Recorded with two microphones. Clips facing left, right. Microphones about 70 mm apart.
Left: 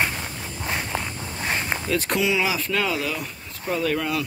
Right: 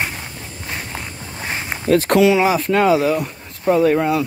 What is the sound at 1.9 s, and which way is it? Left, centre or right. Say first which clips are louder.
Speech: right 11 dB; right.